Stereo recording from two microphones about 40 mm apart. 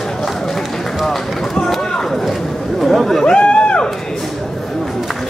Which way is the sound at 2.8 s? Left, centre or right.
Centre.